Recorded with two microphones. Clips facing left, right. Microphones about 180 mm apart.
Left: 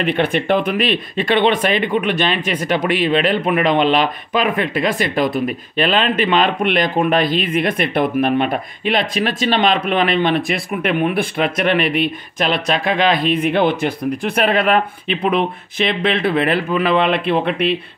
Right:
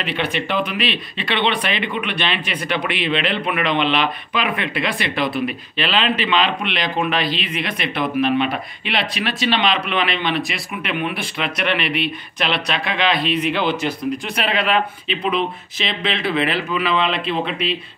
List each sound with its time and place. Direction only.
0.0 s speech: 50° left (ahead or behind)